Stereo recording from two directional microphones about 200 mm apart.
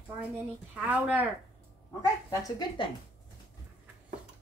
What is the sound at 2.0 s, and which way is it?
Speech, 20° left (ahead or behind).